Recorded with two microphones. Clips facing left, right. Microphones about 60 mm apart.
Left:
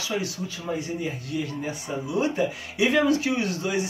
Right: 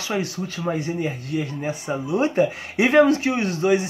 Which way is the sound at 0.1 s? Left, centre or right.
Right.